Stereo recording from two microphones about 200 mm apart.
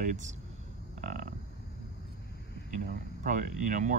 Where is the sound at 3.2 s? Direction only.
40° right (ahead or behind).